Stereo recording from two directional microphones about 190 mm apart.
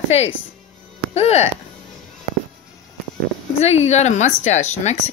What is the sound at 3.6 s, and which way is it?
Speech, 35° left (ahead or behind).